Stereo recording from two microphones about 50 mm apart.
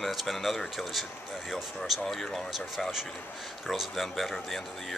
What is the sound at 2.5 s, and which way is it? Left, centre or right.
Speech, centre.